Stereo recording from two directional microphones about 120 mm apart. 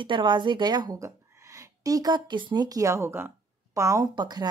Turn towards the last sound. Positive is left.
turn(degrees=-35)  # may be behind; listen again after turning